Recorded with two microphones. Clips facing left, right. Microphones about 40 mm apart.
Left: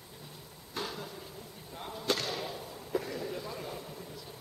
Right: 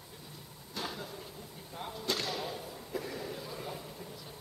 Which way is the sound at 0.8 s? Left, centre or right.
Centre.